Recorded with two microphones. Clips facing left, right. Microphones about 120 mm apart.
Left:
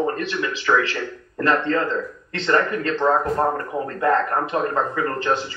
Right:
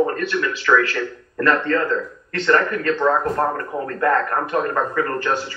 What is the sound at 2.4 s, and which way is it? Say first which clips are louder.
A man's voice: right 2 dB; 25° left (ahead or behind).